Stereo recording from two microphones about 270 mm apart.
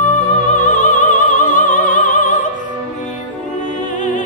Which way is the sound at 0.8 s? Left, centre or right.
Left.